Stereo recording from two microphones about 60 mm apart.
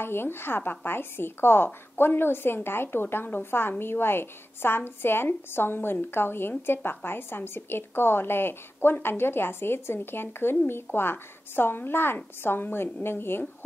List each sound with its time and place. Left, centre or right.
0.0 s a woman's voice: left